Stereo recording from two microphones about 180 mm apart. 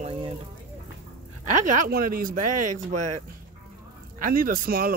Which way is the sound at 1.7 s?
55° right (ahead or behind).